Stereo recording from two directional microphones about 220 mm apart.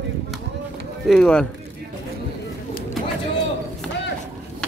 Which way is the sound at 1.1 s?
5° left (ahead or behind).